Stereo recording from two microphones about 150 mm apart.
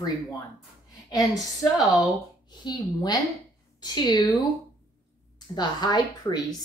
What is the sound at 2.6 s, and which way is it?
A woman's voice, 30° left (ahead or behind).